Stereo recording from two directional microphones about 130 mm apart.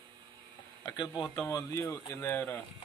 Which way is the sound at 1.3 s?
20° left (ahead or behind).